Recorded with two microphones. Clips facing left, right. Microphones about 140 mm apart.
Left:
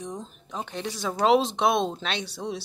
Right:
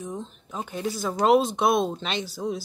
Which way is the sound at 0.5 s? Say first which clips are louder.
Right 3 dB; 5° right (ahead or behind).